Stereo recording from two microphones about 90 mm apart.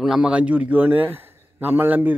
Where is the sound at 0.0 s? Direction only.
10° right (ahead or behind).